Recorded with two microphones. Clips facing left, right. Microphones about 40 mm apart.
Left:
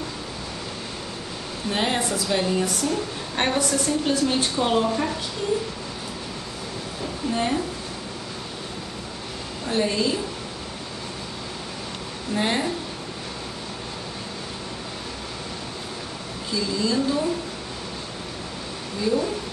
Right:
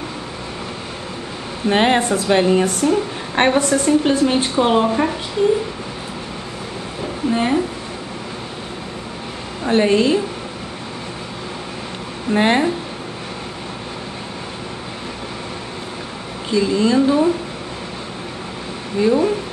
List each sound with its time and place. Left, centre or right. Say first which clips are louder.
1.7 s speech: right 9 dB; right
7.2 s a woman's voice: right 7 dB; right
9.7 s speech: right 9 dB; right
12.3 s speech: right 9 dB; right
16.4 s speech: right 9 dB; right
18.9 s speech: right 8 dB; right